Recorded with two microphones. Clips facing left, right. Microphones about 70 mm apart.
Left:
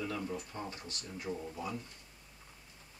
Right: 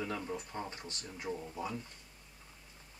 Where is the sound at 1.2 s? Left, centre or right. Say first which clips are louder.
Right 1 dB; centre.